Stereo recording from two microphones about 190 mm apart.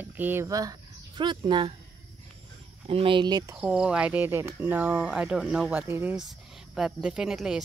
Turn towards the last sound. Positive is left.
turn(degrees=-5)  # may be behind; listen again after turning